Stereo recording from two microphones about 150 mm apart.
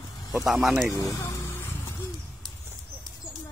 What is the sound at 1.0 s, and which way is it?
Music, 20° left (ahead or behind).